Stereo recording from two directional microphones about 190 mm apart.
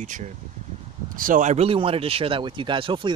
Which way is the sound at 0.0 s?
40° right (ahead or behind).